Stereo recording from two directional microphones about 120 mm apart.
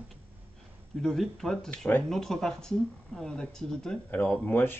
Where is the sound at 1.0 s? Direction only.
Centre (ahead or behind).